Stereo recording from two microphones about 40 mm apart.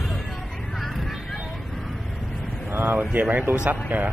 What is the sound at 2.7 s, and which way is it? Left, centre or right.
Speech, right.